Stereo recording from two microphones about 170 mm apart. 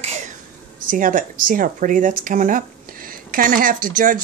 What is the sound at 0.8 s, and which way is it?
Speech, 55° right (ahead or behind).